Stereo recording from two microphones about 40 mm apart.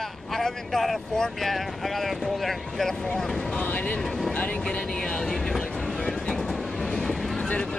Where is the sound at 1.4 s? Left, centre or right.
Centre.